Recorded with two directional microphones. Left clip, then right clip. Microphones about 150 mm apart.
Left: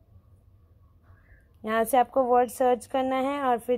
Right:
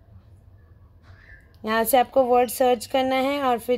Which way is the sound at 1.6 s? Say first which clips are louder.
Right 3 dB; 10° left (ahead or behind).